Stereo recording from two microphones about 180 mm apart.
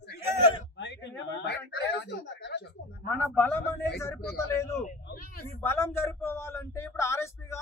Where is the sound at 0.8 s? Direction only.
80° left.